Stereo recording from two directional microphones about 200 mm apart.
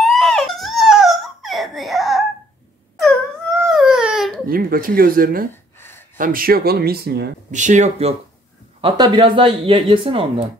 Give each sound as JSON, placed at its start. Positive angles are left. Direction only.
{"t": 0.0, "sound": "a sound", "side_deg": 0}
{"t": 3.6, "sound": "baby cry", "side_deg": -5}
{"t": 4.5, "sound": "speech", "side_deg": -45}
{"t": 5.5, "sound": "gasp", "side_deg": 10}
{"t": 6.1, "sound": "speech", "side_deg": -45}
{"t": 7.5, "sound": "speech", "side_deg": -40}
{"t": 8.8, "sound": "speech", "side_deg": -25}